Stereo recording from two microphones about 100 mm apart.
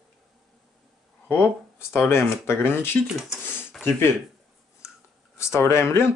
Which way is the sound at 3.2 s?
5° right (ahead or behind).